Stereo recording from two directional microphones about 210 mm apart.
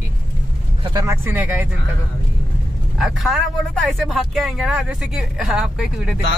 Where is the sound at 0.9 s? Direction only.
15° right (ahead or behind).